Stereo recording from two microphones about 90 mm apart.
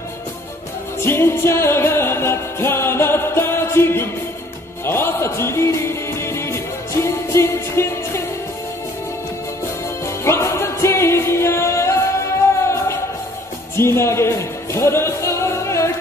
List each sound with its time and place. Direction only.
1.0 s music: 25° left (ahead or behind)
10.0 s music: 30° left (ahead or behind)